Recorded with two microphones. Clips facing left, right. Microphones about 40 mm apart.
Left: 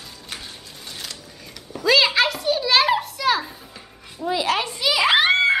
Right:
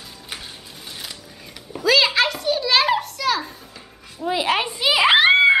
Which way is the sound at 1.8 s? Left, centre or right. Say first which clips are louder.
Even; centre.